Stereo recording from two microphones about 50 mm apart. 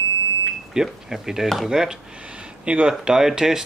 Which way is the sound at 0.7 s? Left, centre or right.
Centre.